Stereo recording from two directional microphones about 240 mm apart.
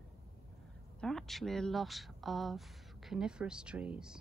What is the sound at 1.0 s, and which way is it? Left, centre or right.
Speech, centre.